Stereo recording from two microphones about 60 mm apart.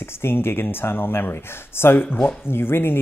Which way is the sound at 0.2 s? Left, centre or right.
Left.